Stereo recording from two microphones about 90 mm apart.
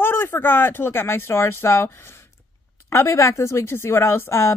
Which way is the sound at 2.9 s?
30° left (ahead or behind).